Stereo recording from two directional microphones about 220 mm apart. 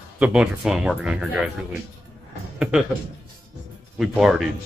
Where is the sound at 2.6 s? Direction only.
5° right (ahead or behind).